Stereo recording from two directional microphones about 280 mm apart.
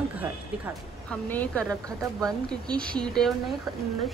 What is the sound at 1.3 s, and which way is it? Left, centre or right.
Speech, centre.